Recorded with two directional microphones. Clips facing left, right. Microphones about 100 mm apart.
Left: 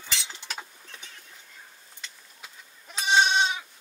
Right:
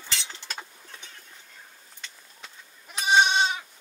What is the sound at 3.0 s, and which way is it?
Goat, 5° right (ahead or behind).